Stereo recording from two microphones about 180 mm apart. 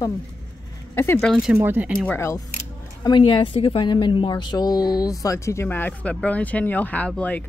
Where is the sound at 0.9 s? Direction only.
15° left (ahead or behind).